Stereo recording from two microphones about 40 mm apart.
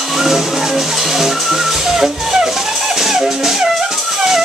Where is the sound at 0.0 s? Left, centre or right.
Centre.